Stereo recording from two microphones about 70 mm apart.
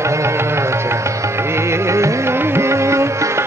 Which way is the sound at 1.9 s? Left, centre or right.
Right.